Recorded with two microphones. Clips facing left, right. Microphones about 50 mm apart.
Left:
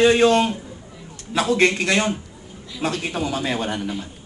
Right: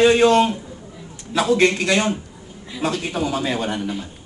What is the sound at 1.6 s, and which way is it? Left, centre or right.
Speech, left.